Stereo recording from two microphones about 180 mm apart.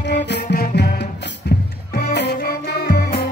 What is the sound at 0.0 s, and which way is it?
Music, 70° left (ahead or behind).